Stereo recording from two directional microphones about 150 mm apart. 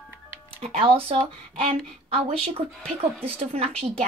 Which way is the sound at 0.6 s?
40° right (ahead or behind).